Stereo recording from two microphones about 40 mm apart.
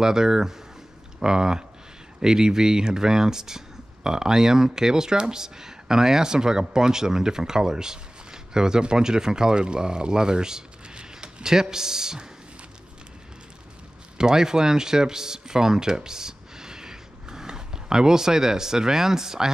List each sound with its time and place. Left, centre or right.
0.0 s speech: centre
14.1 s speech: centre